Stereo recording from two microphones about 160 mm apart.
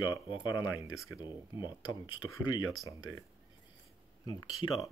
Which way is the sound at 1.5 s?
30° left (ahead or behind).